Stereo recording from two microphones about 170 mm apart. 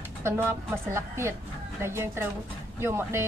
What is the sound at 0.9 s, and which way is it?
Speech, 15° right (ahead or behind).